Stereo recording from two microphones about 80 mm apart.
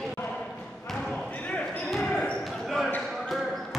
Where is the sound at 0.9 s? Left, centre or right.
Centre.